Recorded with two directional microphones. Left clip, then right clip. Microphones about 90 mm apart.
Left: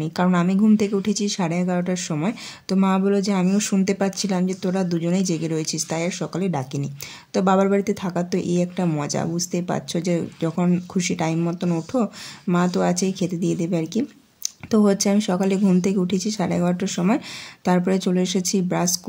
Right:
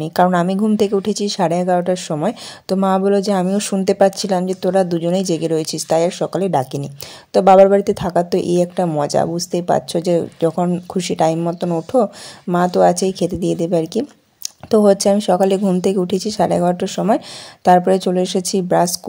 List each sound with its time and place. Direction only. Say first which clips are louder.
0.0 s a woman's voice: right 8 dB; 55° right (ahead or behind)